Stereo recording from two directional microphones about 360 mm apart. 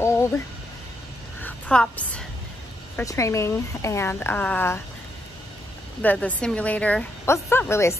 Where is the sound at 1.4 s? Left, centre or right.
Centre.